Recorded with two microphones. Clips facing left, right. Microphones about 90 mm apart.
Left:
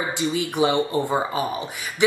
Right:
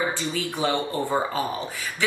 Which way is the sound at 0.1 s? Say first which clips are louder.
Left 4 dB; 20° left (ahead or behind).